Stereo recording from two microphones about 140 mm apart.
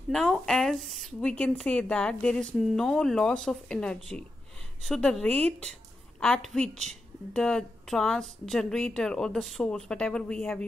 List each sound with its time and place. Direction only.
0.1 s a woman's voice: centre (ahead or behind)